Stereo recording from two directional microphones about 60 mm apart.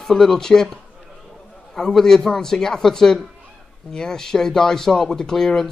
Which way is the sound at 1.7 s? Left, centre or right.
Centre.